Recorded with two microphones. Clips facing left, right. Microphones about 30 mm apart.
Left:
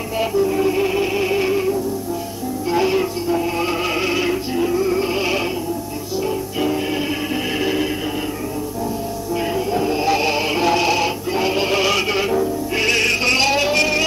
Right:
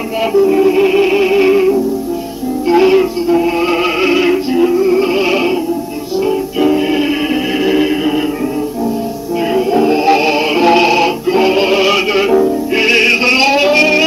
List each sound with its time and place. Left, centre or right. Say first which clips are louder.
0.2 s music: right 8 dB; right
9.5 s music: right 10 dB; right